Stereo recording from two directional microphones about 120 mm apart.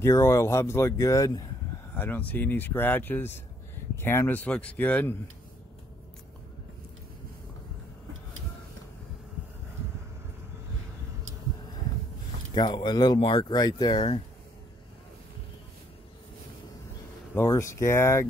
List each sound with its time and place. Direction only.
0.0 s speech: 25° left (ahead or behind)
2.0 s speech: 15° left (ahead or behind)
12.5 s speech: 40° left (ahead or behind)
17.5 s speech: 25° left (ahead or behind)